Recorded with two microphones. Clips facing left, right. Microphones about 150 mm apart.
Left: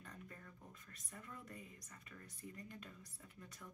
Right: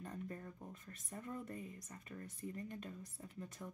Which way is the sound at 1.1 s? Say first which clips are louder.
Right 8 dB; 35° right (ahead or behind).